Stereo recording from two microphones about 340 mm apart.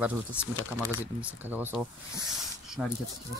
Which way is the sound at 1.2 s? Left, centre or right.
Centre.